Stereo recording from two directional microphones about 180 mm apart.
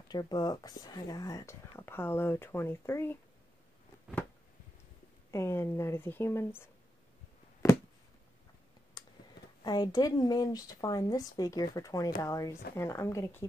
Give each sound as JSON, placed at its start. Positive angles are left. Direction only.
{"t": 0.1, "sound": "speech", "side_deg": 20}
{"t": 5.3, "sound": "speech", "side_deg": 15}
{"t": 9.0, "sound": "a sound", "side_deg": 20}
{"t": 9.6, "sound": "speech", "side_deg": 20}